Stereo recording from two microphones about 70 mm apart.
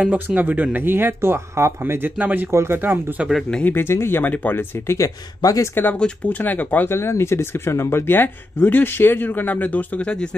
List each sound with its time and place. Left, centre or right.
0.0 s speech: right
2.5 s speech: right
3.6 s speech: left
4.6 s speech: left
5.0 s speech: left
5.9 s speech: centre
6.3 s speech: left
6.9 s speech: left; by 10.3 s centre